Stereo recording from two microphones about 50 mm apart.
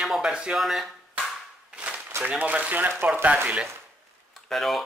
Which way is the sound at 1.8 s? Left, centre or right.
Right.